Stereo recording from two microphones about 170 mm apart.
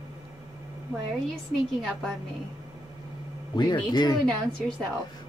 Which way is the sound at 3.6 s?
25° left (ahead or behind).